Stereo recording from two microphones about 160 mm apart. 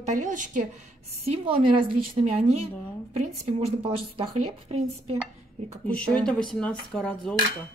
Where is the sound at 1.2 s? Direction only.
35° right (ahead or behind).